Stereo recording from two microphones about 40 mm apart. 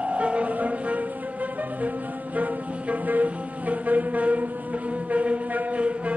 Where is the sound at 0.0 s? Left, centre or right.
Right.